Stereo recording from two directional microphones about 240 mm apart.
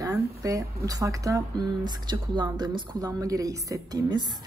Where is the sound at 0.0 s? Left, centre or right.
Centre.